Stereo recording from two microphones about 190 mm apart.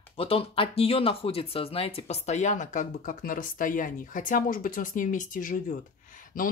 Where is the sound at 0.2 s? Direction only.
30° left (ahead or behind).